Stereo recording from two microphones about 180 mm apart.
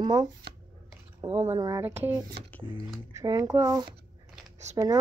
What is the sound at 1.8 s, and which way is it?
A woman's voice, 10° right (ahead or behind).